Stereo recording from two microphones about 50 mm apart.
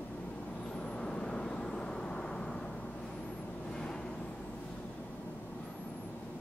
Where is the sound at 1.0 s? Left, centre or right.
Centre.